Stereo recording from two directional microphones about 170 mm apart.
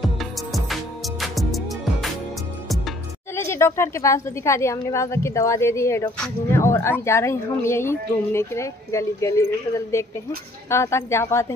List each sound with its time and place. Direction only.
0.0 s music: centre (ahead or behind)
3.3 s a woman's voice: 15° left (ahead or behind)